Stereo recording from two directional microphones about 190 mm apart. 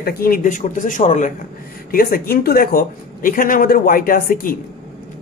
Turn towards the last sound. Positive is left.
turn(degrees=50)  # may be behind; listen again after turning